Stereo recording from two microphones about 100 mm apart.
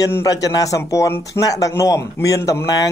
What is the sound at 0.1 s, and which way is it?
Speech, 35° left (ahead or behind).